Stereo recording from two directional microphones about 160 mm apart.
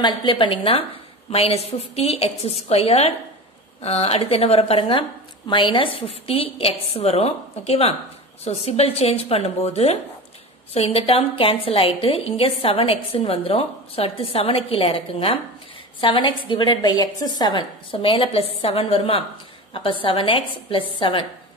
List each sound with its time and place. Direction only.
0.0 s a woman's voice: 30° left (ahead or behind)